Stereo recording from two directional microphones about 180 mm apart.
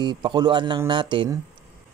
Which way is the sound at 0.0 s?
25° right (ahead or behind).